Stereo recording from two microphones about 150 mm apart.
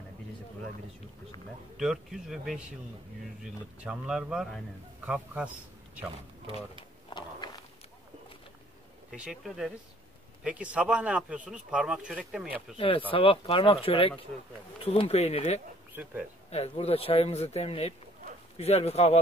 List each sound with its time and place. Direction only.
1.8 s a man's voice: 5° right (ahead or behind)
7.1 s a sound: 30° left (ahead or behind)
9.1 s a man's voice: 5° right (ahead or behind)
12.7 s speech: 35° left (ahead or behind)
15.9 s speech: 10° right (ahead or behind)
16.4 s speech: 45° left (ahead or behind)